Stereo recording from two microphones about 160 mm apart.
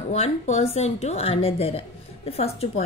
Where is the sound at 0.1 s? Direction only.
45° left (ahead or behind).